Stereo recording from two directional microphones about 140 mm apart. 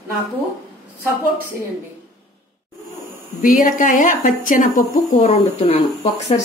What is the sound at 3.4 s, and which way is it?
Speech, 70° left (ahead or behind).